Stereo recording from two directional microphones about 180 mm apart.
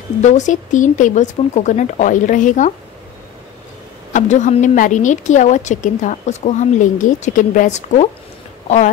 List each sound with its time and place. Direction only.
0.2 s a woman's voice: 40° left (ahead or behind)
4.1 s a woman's voice: 40° left (ahead or behind)